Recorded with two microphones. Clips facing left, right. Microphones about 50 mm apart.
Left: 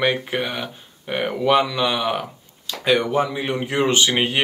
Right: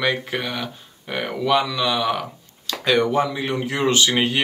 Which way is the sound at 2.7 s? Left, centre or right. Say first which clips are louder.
Even; centre.